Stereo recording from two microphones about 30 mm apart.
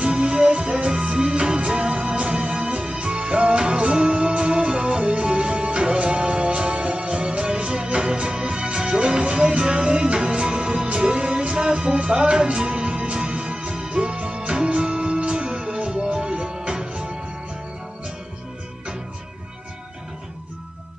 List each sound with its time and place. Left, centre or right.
0.0 s music: right